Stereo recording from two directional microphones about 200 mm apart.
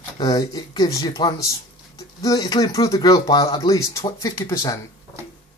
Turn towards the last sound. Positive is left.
turn(degrees=20)  # may be behind; listen again after turning